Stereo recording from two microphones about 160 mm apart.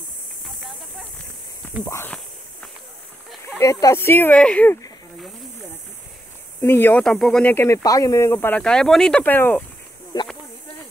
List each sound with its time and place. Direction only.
1.9 s speech: 15° left (ahead or behind)
3.5 s speech: 15° left (ahead or behind)
6.6 s speech: 15° left (ahead or behind)
10.1 s snake: 25° left (ahead or behind)